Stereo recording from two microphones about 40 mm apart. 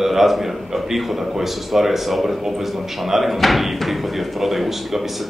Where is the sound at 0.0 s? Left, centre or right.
Centre.